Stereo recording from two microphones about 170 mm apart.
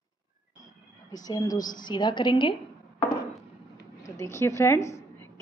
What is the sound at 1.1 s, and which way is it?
A woman's voice, 20° left (ahead or behind).